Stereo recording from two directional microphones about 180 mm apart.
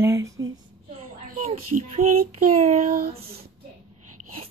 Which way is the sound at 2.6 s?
45° right (ahead or behind).